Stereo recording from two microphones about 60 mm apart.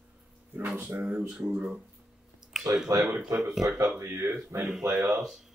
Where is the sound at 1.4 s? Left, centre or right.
Centre.